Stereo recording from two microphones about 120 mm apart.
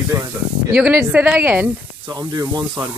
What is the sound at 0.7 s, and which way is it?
Speech, 10° right (ahead or behind).